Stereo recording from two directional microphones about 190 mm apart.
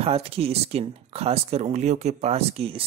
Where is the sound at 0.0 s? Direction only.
30° right (ahead or behind).